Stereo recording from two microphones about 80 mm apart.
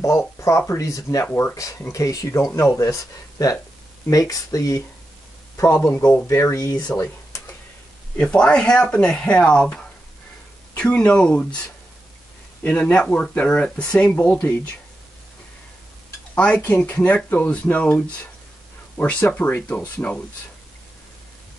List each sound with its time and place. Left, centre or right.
0.4 s speech: left
6.2 s speech: left
8.2 s speech: centre
12.6 s speech: centre
16.3 s speech: centre